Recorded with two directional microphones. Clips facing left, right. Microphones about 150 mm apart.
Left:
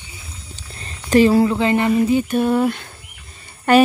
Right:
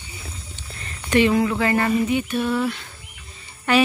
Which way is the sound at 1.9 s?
35° left (ahead or behind).